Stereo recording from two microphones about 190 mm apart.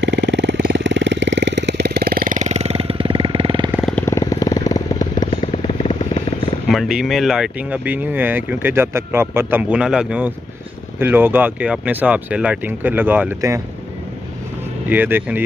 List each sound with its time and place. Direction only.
0.0 s vehicle: 65° right (ahead or behind); by 3.7 s 25° right (ahead or behind)
3.7 s vehicle: centre (ahead or behind)
4.0 s vehicle: 15° left (ahead or behind)
6.7 s speech: centre (ahead or behind)
14.9 s speech: 10° right (ahead or behind)